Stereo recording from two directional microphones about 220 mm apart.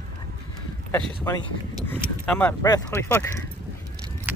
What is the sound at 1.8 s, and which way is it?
Speech, 5° left (ahead or behind).